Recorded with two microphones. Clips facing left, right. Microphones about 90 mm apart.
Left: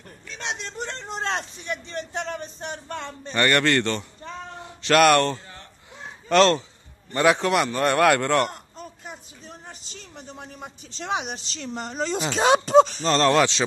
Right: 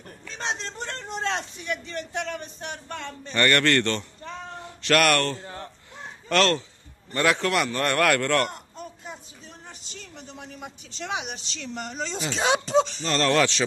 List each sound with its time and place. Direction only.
0.3 s a sound: 35° right (ahead or behind)
1.7 s speech: 30° left (ahead or behind)
3.3 s a man's voice: 15° left (ahead or behind)
5.4 s a sound: 30° right (ahead or behind)
6.2 s a man's voice: 25° left (ahead or behind)
10.1 s speech: 40° left (ahead or behind)
13.0 s a man's voice: 30° left (ahead or behind)